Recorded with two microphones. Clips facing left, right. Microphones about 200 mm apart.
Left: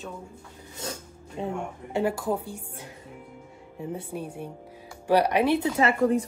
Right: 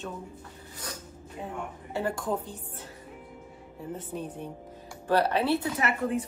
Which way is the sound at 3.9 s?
10° left (ahead or behind).